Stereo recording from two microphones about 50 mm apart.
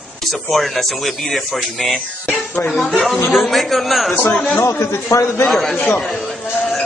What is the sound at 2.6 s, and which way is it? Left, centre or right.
Speech, left.